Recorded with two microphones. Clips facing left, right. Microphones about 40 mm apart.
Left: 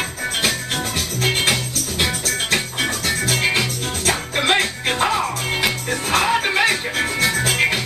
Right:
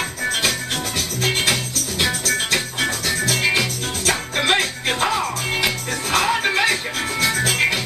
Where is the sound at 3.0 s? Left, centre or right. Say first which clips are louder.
Even; left.